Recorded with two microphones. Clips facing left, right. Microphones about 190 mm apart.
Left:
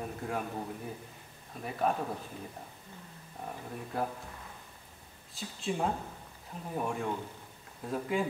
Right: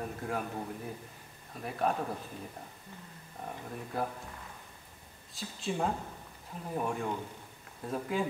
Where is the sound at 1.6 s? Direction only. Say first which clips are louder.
Left 1 dB; centre (ahead or behind).